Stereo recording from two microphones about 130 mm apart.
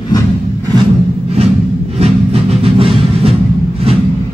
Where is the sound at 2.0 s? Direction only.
50° right (ahead or behind).